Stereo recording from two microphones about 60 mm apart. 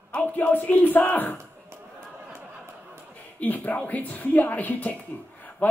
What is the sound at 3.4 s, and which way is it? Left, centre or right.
Speech, left.